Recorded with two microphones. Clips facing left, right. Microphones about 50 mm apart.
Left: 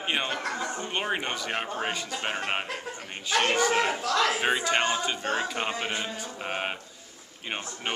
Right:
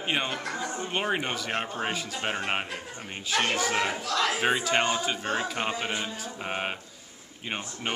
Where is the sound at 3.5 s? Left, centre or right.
Centre.